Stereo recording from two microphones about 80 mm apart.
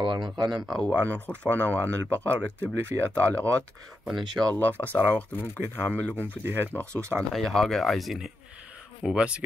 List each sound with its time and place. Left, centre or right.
0.0 s speech: right
0.7 s speech: centre
1.0 s speech: centre
4.5 s speech: left
6.4 s speech: right
6.7 s speech: centre
7.2 s speech: centre
9.0 s speech: centre